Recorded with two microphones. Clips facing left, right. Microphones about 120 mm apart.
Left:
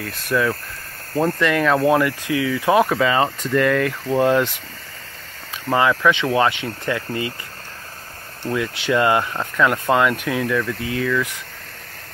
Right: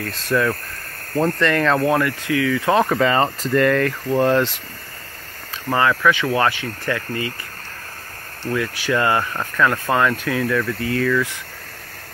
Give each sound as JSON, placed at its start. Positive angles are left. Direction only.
{"t": 0.1, "sound": "speech", "side_deg": 15}
{"t": 1.8, "sound": "speech", "side_deg": 20}
{"t": 5.7, "sound": "speech", "side_deg": 15}
{"t": 8.5, "sound": "speech", "side_deg": 25}